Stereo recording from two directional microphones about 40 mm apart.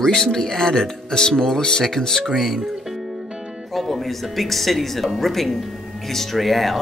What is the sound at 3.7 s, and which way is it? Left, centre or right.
Speech, centre.